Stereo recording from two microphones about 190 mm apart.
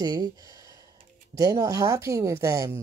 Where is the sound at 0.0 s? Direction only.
20° right (ahead or behind).